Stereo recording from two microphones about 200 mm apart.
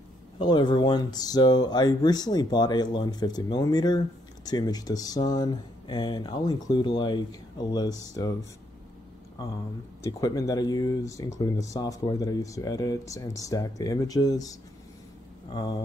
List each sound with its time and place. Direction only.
0.4 s speech: 20° left (ahead or behind)
10.0 s speech: 15° left (ahead or behind)